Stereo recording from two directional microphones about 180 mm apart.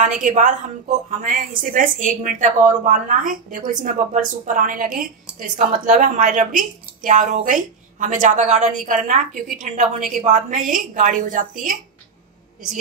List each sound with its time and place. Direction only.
0.2 s a woman's voice: 45° right (ahead or behind)